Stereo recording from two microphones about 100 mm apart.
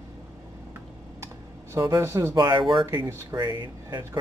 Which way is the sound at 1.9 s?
25° right (ahead or behind).